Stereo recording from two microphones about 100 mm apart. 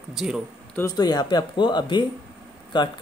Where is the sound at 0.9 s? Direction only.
40° left (ahead or behind).